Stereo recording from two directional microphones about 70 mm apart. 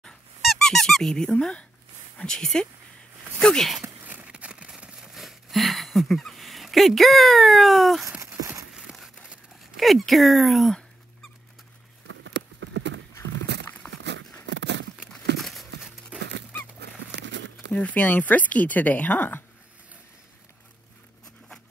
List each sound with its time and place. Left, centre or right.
0.6 s squeak: centre
1.4 s speech: centre
4.1 s a sound: right; by 8.1 s centre
9.8 s speech: centre
15.3 s crumpling: centre
17.7 s speech: left